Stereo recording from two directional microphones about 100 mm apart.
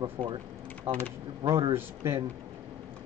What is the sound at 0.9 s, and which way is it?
Speech, 90° right.